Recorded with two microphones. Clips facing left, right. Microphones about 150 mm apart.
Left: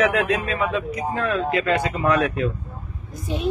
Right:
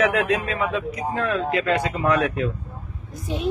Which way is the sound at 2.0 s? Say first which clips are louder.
Left 1 dB; 55° left (ahead or behind).